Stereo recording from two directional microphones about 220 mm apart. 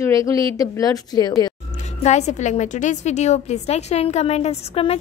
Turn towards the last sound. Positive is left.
turn(degrees=25)  # may be behind; listen again after turning